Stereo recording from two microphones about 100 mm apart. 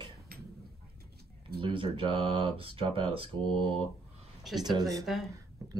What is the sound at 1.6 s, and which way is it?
Speech, 60° right (ahead or behind).